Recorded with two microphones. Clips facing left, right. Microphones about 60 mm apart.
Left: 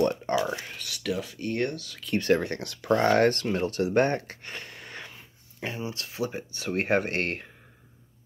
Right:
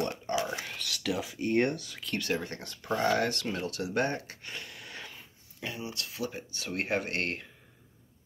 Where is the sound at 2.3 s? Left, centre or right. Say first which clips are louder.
Left 7 dB; left.